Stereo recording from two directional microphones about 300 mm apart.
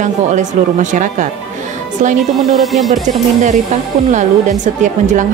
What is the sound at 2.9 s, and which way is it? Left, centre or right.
A woman's voice, right.